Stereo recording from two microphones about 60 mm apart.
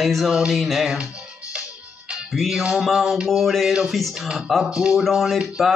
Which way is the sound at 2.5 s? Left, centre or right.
Centre.